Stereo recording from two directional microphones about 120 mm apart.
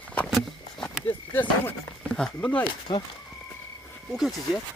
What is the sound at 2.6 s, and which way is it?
Speech, 40° left (ahead or behind).